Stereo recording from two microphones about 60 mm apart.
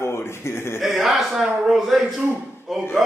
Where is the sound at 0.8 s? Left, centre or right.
Centre.